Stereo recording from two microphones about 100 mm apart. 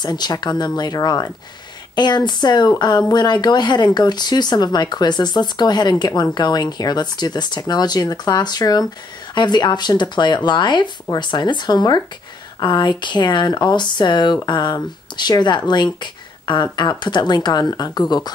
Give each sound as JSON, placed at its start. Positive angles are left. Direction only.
{"t": 0.0, "sound": "speech", "side_deg": 45}